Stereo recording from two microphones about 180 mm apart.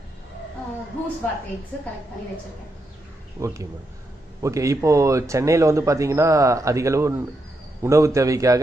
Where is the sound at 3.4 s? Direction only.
15° right (ahead or behind).